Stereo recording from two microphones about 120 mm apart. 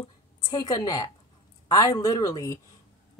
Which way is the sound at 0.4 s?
30° left (ahead or behind).